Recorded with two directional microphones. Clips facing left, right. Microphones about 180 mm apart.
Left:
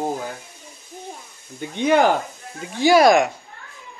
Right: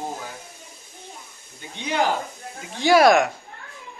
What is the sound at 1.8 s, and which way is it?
Speech, 55° left (ahead or behind).